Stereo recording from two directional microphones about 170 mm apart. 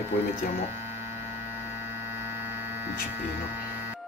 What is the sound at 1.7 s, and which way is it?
Mains hum, 15° right (ahead or behind).